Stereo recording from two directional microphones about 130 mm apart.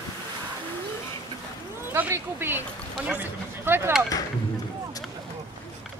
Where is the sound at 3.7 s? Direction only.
15° right (ahead or behind).